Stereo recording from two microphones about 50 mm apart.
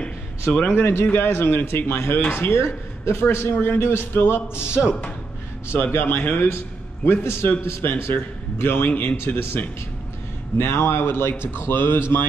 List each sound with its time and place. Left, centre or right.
0.0 s a sound: centre
0.7 s a man's voice: left
3.5 s a man's voice: left
3.8 s a man's voice: left